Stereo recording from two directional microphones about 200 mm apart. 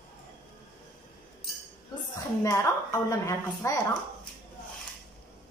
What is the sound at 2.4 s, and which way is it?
A woman's voice, 15° left (ahead or behind).